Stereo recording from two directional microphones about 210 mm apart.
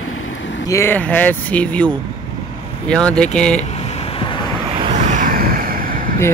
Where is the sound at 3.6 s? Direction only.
30° left (ahead or behind).